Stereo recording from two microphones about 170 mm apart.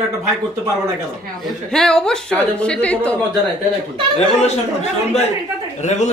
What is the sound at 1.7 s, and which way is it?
A woman's voice, 5° left (ahead or behind).